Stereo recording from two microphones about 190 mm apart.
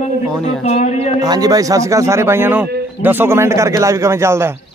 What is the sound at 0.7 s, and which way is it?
Speech, 35° left (ahead or behind).